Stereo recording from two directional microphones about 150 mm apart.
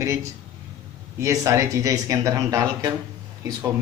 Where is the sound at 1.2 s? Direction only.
20° right (ahead or behind).